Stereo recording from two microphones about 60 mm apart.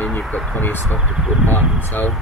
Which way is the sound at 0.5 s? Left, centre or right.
Left.